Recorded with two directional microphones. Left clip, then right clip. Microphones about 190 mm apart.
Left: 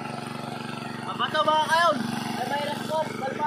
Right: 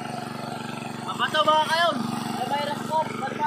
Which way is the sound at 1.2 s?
20° right (ahead or behind).